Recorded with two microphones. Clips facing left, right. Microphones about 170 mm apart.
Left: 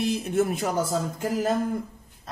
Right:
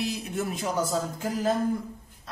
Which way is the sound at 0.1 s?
50° left (ahead or behind).